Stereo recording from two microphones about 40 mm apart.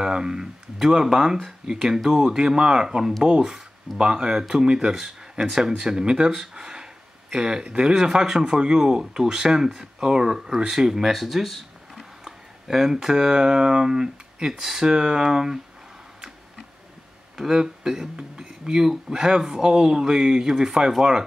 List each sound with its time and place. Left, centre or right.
0.0 s speech: centre
4.0 s speech: centre
5.8 s a sound: centre
7.8 s speech: centre
17.4 s speech: centre